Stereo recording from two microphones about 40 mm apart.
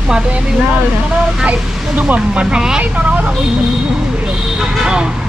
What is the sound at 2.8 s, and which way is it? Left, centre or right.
Speech, right.